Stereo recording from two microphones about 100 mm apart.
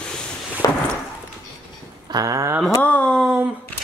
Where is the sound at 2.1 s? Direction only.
35° right (ahead or behind).